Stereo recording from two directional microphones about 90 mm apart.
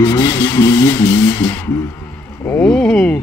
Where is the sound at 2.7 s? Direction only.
5° left (ahead or behind).